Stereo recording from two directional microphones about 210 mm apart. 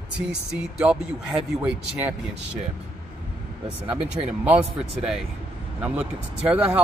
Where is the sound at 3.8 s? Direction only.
5° right (ahead or behind).